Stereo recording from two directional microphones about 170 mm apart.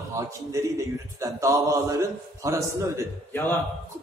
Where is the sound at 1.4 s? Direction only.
20° right (ahead or behind).